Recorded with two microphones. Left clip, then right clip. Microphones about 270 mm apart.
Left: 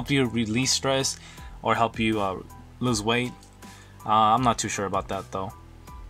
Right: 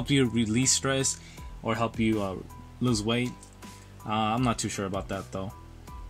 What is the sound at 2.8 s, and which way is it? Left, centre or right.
Speech, left.